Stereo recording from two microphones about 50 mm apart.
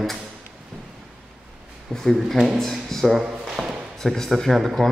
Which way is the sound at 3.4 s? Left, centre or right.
Centre.